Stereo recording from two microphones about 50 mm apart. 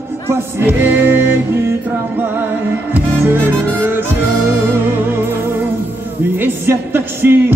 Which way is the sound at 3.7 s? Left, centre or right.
Right.